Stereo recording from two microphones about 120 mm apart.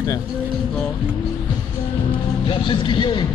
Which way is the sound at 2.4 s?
45° left (ahead or behind).